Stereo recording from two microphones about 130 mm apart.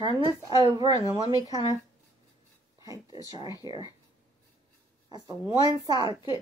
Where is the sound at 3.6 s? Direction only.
30° right (ahead or behind).